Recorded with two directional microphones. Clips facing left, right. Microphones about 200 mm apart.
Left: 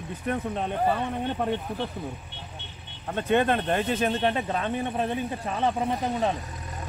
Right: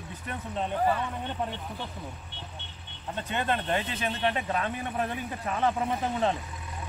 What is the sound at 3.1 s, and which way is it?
Speech, 55° left (ahead or behind).